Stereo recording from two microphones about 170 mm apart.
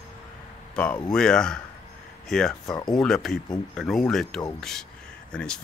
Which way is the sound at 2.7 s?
25° left (ahead or behind).